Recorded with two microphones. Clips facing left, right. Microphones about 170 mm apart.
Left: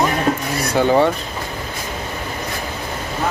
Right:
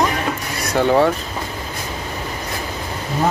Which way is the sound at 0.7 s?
Centre (ahead or behind).